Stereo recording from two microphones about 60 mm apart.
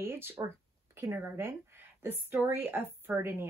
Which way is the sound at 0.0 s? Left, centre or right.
Right.